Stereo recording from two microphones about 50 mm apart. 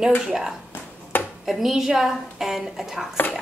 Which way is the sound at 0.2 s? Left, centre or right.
Centre.